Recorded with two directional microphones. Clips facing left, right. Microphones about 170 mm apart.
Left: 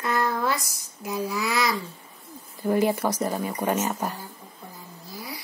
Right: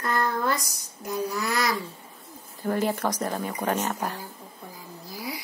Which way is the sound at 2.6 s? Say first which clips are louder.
Left 3 dB; 10° left (ahead or behind).